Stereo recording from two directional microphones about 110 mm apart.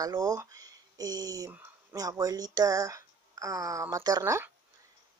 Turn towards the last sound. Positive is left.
turn(degrees=-30)  # may be behind; listen again after turning